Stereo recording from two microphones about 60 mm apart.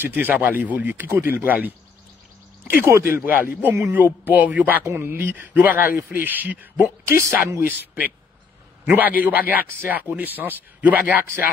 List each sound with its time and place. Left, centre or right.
0.0 s a man's voice: right
3.2 s a man's voice: right
7.1 s speech: right
7.6 s a man's voice: right